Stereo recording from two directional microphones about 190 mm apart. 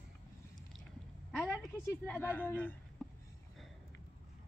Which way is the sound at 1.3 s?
5° left (ahead or behind).